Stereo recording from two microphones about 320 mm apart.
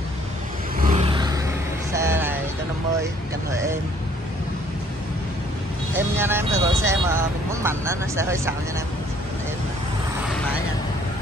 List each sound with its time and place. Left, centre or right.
0.7 s vehicle: right
5.9 s speech: centre